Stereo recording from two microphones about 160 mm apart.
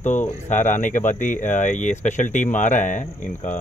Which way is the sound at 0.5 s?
50° left (ahead or behind).